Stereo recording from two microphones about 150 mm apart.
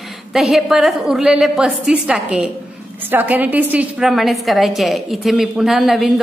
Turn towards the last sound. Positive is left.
turn(degrees=0)  # may be behind; listen again after turning